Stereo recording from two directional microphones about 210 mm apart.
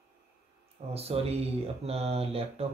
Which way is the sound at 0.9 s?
30° right (ahead or behind).